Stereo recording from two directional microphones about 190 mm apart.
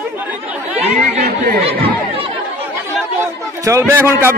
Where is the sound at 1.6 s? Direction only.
30° right (ahead or behind).